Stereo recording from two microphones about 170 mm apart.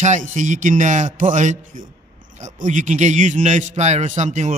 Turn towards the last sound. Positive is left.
turn(degrees=-45)  # may be behind; listen again after turning